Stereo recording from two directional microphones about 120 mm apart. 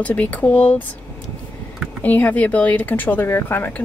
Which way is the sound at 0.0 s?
10° left (ahead or behind).